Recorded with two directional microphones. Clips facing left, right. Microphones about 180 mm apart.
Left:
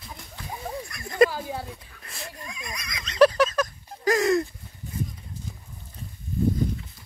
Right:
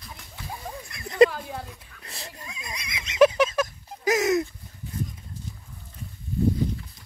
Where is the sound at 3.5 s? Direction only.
10° right (ahead or behind).